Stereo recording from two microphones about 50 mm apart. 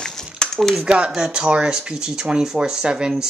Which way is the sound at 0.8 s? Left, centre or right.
Centre.